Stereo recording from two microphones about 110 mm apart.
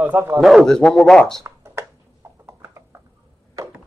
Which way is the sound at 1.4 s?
25° right (ahead or behind).